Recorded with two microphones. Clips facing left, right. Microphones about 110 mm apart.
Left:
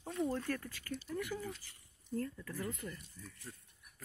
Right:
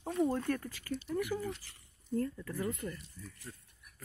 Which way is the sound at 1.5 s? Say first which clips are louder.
Right 5 dB; 80° right.